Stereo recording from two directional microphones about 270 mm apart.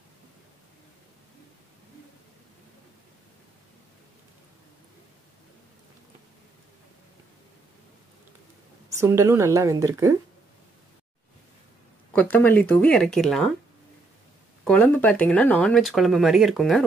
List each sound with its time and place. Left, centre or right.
8.9 s speech: centre
12.1 s speech: centre
14.6 s speech: centre